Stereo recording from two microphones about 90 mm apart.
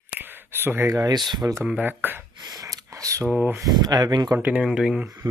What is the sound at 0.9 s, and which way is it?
Speech, 50° right (ahead or behind).